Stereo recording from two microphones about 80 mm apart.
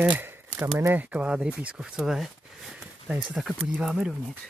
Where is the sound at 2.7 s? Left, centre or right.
Centre.